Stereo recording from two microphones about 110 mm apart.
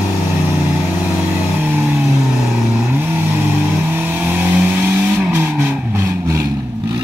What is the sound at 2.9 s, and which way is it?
Vehicle, 20° right (ahead or behind).